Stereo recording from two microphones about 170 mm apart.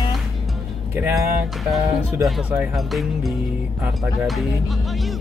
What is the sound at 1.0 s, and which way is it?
Speech, 15° right (ahead or behind).